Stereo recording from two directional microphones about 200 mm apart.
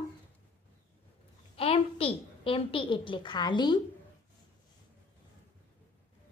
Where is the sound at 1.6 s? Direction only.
30° left (ahead or behind).